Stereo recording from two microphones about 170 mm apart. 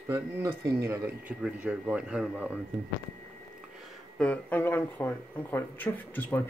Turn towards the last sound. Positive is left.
turn(degrees=10)  # may be behind; listen again after turning